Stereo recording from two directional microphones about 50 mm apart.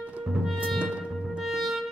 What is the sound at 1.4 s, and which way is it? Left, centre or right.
Music, centre.